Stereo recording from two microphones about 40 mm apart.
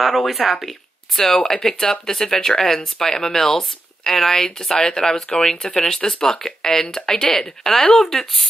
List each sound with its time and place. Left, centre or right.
0.0 s speech: centre
1.1 s speech: centre